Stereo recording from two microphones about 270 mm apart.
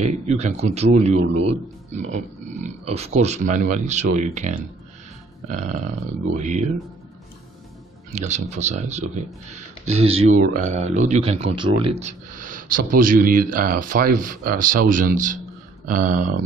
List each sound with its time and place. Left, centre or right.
0.0 s speech: right
8.1 s speech: right